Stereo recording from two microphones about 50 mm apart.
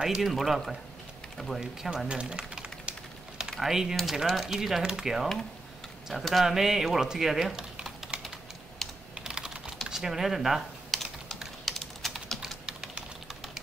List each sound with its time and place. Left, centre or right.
0.0 s speech: centre
1.6 s speech: centre
2.0 s a sound: centre
3.4 s typing: centre
3.9 s speech: centre
6.0 s speech: centre
8.1 s typing: right
9.2 s typing: centre